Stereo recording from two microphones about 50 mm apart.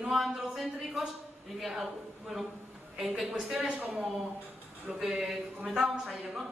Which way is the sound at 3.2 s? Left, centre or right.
Centre.